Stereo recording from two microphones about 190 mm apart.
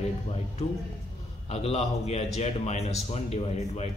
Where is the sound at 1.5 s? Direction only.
35° left (ahead or behind).